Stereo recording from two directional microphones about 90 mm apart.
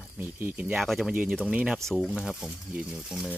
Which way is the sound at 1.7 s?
5° left (ahead or behind).